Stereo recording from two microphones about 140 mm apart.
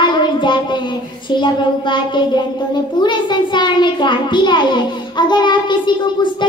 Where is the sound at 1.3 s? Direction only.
35° left (ahead or behind).